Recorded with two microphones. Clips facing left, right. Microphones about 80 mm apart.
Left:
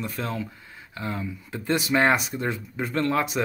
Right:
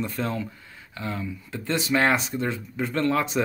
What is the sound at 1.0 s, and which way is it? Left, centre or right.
Speech, centre.